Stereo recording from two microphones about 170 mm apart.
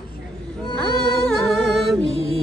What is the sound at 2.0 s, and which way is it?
Music, 35° left (ahead or behind).